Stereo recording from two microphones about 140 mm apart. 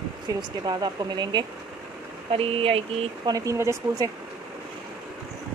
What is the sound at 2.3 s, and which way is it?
Speech, 40° right (ahead or behind).